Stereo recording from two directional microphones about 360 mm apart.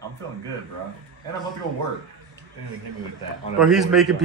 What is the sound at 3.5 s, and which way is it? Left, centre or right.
Speech, centre.